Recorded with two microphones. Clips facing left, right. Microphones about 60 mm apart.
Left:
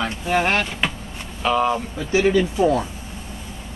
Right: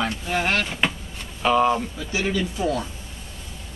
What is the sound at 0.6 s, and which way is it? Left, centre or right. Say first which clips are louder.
Speech: even; centre.